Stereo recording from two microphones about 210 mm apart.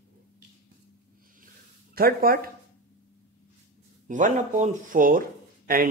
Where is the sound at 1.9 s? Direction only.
45° right (ahead or behind).